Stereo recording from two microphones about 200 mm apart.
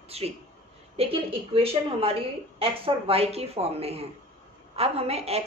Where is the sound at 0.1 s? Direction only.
30° right (ahead or behind).